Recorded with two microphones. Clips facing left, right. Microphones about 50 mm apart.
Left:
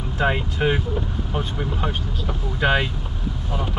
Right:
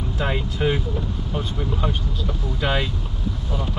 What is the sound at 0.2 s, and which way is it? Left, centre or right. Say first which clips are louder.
Speech: left 3 dB; centre.